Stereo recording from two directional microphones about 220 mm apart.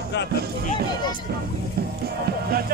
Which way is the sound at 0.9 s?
20° left (ahead or behind).